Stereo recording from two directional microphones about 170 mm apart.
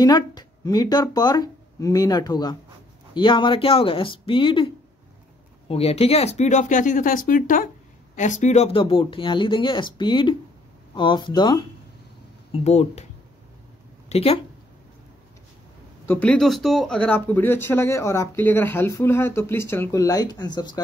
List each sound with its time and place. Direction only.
0.0 s speech: 25° left (ahead or behind)
5.7 s speech: 35° left (ahead or behind)
12.5 s speech: 40° left (ahead or behind)
14.0 s speech: 40° left (ahead or behind)
16.1 s speech: 5° left (ahead or behind); by 20.8 s 25° left (ahead or behind)